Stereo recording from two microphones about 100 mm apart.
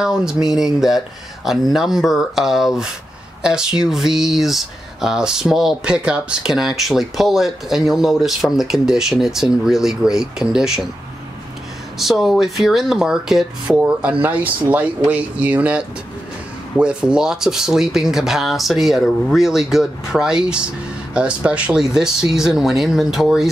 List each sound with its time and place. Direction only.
0.0 s speech: 5° right (ahead or behind)
12.0 s speech: centre (ahead or behind)
13.8 s speech: 15° right (ahead or behind)